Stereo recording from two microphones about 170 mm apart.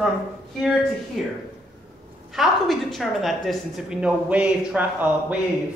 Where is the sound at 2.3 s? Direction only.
Centre (ahead or behind).